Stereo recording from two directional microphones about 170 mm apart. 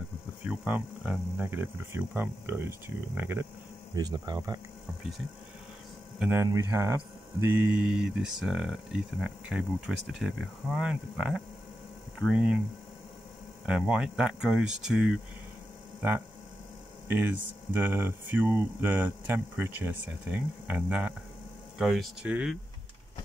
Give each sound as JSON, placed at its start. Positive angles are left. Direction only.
{"t": 0.5, "sound": "speech", "side_deg": -5}
{"t": 3.9, "sound": "speech", "side_deg": -25}
{"t": 6.1, "sound": "speech", "side_deg": -5}
{"t": 6.4, "sound": "speech", "side_deg": -20}
{"t": 13.7, "sound": "speech", "side_deg": -5}
{"t": 17.1, "sound": "speech", "side_deg": -10}